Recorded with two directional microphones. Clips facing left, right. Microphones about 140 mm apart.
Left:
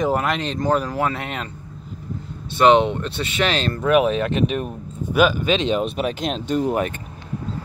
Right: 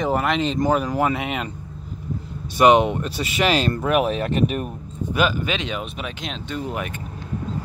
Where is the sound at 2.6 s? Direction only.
10° right (ahead or behind).